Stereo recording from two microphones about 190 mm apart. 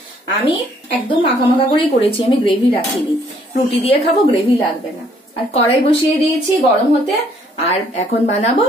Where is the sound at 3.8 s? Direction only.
30° left (ahead or behind).